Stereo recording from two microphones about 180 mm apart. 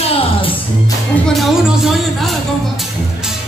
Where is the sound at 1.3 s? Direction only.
Centre (ahead or behind).